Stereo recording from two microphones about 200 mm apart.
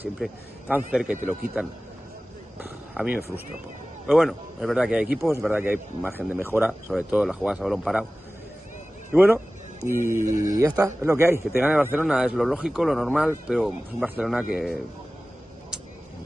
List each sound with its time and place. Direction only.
0.0 s a man's voice: 10° right (ahead or behind)
2.6 s a man's voice: 10° right (ahead or behind)
9.1 s a man's voice: 10° right (ahead or behind)